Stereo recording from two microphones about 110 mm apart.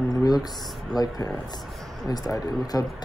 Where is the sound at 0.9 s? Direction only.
35° left (ahead or behind).